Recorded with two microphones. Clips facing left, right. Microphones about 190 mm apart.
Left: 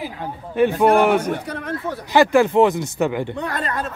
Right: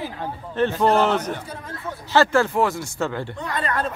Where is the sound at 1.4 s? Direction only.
70° left (ahead or behind).